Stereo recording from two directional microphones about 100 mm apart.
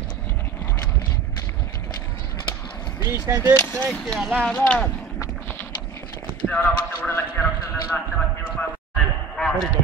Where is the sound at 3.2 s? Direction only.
35° right (ahead or behind).